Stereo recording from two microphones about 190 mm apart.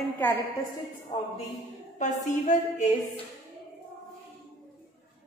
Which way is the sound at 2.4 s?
40° left (ahead or behind).